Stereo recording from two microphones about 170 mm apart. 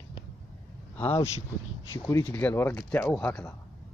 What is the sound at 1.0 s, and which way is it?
Speech, 10° left (ahead or behind).